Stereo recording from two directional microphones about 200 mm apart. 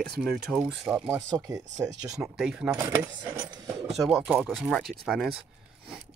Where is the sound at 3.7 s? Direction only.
Centre (ahead or behind).